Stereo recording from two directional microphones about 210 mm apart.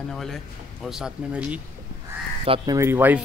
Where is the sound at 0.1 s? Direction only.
Centre (ahead or behind).